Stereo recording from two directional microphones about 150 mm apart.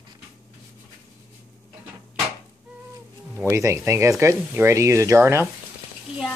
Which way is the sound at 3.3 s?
15° right (ahead or behind).